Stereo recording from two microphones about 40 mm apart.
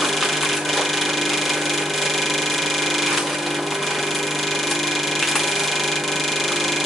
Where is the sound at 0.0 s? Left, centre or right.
Centre.